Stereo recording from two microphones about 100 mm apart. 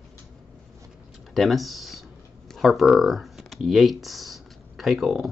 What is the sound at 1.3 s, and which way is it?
Speech, centre (ahead or behind).